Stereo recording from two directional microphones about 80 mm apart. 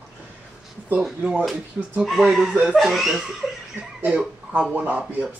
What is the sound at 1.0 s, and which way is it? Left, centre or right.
Speech, centre.